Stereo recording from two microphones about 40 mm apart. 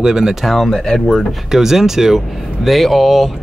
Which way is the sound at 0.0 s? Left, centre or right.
Centre.